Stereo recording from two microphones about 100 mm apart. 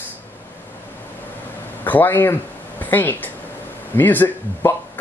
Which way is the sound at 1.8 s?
20° left (ahead or behind).